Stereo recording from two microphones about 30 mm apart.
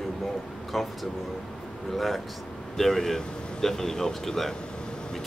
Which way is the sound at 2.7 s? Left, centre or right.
Centre.